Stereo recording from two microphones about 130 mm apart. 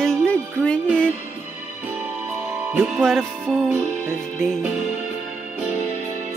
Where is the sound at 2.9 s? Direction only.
Centre (ahead or behind).